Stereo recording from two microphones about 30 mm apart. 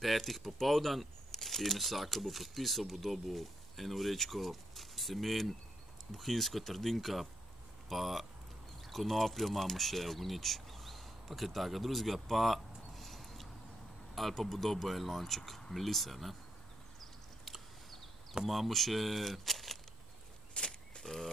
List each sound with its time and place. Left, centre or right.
0.0 s speech: centre
18.5 s speech: centre
20.5 s single-lens reflex camera: left
21.0 s a sound: centre